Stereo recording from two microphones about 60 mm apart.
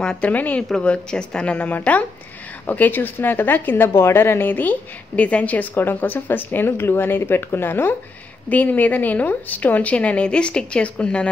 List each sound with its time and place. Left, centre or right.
0.2 s a woman's voice: left
0.8 s a woman's voice: centre